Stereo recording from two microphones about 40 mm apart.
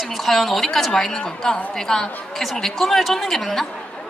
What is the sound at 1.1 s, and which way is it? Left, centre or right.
A woman's voice, centre.